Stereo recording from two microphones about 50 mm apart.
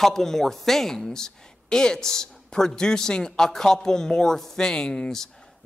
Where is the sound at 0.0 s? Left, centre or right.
Centre.